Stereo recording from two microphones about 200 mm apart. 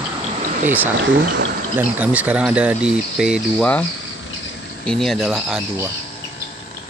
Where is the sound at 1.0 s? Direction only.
65° right (ahead or behind).